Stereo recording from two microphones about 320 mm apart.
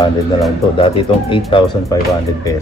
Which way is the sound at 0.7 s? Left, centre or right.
Centre.